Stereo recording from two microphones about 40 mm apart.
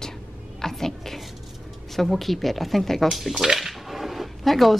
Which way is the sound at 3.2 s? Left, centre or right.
Centre.